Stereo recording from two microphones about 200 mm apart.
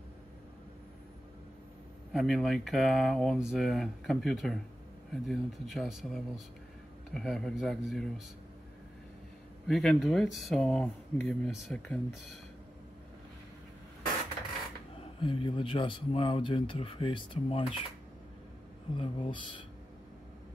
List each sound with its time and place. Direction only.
2.1 s speech: centre (ahead or behind)
9.7 s speech: centre (ahead or behind)
15.1 s speech: 25° left (ahead or behind)
18.9 s speech: 25° left (ahead or behind)